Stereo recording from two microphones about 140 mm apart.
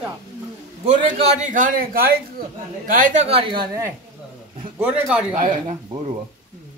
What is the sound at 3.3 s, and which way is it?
Speech, 40° right (ahead or behind).